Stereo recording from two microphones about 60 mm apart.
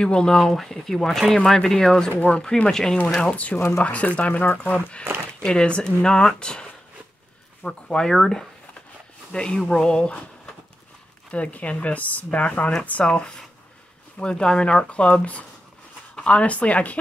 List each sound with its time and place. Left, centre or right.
0.0 s speech: centre
3.2 s speech: left
3.5 s speech: left
3.8 s speech: left
5.4 s speech: centre
13.0 s speech: centre